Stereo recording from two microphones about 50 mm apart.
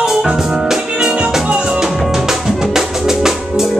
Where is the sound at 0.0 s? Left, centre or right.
Centre.